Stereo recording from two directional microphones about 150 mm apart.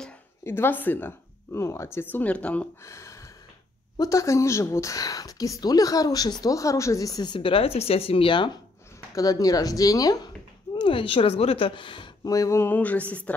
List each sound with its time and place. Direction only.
0.4 s speech: 15° left (ahead or behind)
2.8 s speech: 20° left (ahead or behind); by 8.5 s 35° left (ahead or behind)
9.1 s speech: 25° left (ahead or behind)
10.8 s speech: 35° left (ahead or behind)
12.4 s speech: 20° left (ahead or behind)